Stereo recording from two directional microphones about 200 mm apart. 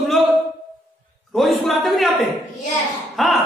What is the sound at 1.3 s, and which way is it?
Speech, centre (ahead or behind).